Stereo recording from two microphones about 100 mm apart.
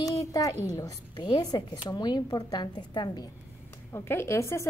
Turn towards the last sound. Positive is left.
turn(degrees=30)  # may be behind; listen again after turning